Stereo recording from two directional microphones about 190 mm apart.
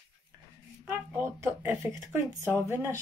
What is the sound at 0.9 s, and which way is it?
Speech, 15° right (ahead or behind).